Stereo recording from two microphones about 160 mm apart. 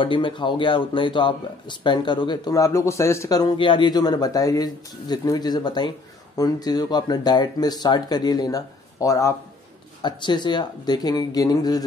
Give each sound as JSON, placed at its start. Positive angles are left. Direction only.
{"t": 0.0, "sound": "speech", "side_deg": 30}